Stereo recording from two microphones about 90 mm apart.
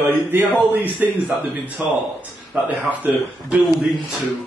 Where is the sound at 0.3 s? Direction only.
25° right (ahead or behind).